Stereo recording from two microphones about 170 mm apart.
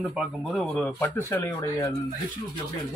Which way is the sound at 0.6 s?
10° left (ahead or behind).